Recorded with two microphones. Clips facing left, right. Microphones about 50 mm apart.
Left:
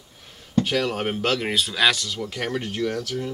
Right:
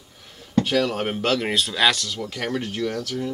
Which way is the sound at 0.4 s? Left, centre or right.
Centre.